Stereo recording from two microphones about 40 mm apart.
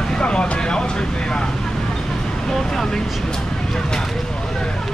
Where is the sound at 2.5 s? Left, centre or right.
Centre.